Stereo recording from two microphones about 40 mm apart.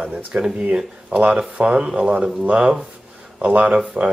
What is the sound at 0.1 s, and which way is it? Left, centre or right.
Speech, right.